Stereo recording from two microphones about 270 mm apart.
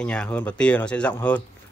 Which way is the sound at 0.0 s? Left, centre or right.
Centre.